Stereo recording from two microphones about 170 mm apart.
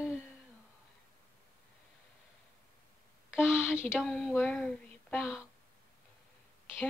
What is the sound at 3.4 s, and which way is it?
Speech, 15° left (ahead or behind).